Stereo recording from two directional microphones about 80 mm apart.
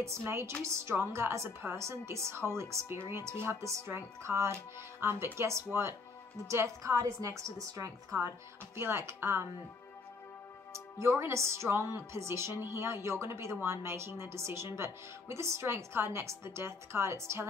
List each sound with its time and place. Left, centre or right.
0.0 s a woman's voice: right
8.7 s speech: right
11.0 s speech: right